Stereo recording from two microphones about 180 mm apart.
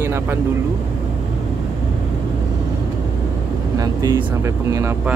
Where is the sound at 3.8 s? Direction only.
20° right (ahead or behind).